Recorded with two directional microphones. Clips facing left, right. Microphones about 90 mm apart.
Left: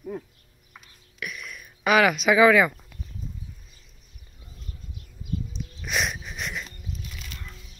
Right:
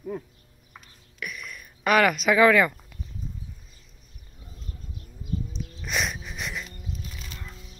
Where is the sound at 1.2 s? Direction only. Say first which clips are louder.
Even; 5° left (ahead or behind).